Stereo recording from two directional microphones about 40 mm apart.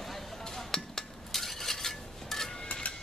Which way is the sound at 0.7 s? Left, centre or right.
Centre.